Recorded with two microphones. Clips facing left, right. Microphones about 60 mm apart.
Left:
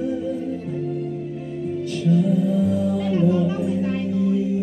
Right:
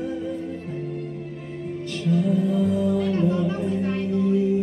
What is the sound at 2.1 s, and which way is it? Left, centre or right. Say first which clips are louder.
Music: left 1 dB; right.